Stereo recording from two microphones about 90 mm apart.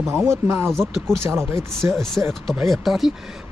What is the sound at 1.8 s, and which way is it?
Speech, 5° left (ahead or behind).